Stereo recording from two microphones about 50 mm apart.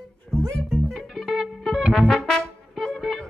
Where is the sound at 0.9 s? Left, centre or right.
Centre.